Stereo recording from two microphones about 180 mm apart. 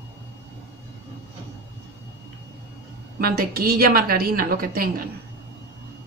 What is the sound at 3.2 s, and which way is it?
Speech, 55° right (ahead or behind).